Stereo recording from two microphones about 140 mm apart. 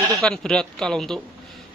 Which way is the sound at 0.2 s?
5° left (ahead or behind).